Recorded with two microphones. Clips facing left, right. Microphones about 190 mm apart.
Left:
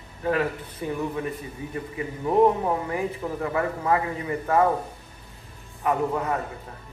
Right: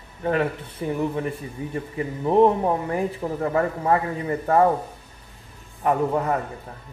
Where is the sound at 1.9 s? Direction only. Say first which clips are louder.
Right 3 dB; 25° right (ahead or behind).